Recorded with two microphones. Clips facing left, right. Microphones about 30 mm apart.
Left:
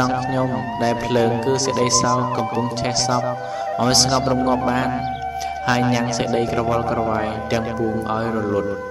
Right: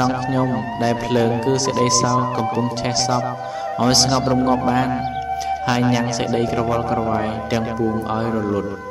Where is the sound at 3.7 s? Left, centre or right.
Centre.